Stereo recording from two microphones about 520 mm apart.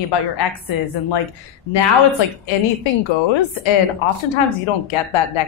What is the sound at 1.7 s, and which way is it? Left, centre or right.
A woman's voice, left.